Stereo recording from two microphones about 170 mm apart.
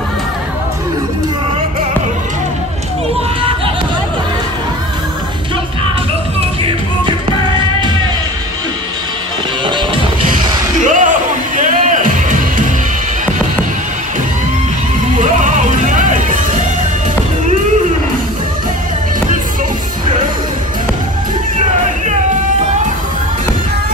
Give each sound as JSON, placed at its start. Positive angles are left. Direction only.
{"t": 10.9, "sound": "music", "side_deg": -50}
{"t": 15.1, "sound": "music", "side_deg": -50}